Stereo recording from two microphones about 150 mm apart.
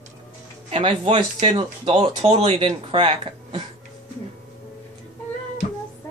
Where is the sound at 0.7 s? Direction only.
45° right (ahead or behind).